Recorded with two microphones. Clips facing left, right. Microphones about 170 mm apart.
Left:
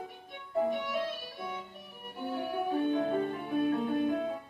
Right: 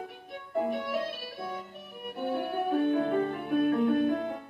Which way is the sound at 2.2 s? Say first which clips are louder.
Right 3 dB; 60° right (ahead or behind).